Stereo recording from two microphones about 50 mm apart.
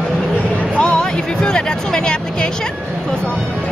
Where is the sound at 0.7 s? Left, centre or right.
Centre.